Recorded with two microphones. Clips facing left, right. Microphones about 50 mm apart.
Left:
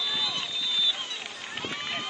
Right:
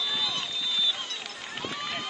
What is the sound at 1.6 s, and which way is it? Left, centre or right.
Run, centre.